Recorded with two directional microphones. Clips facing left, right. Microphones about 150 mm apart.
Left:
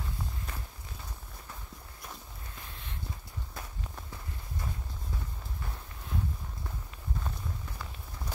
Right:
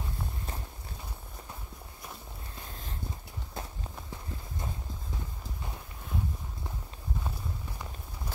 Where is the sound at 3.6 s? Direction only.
25° right (ahead or behind).